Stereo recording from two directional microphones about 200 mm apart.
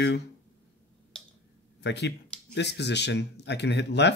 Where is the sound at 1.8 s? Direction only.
60° left (ahead or behind).